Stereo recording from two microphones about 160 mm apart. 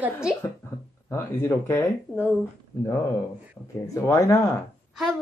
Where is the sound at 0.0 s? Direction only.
5° right (ahead or behind).